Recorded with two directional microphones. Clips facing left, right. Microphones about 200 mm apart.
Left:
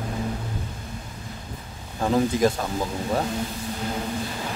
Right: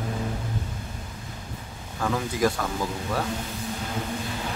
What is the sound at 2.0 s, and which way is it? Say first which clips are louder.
Speech: left 4 dB; 25° left (ahead or behind).